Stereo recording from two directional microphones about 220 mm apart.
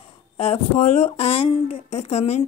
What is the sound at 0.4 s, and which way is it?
A woman's voice, 25° left (ahead or behind).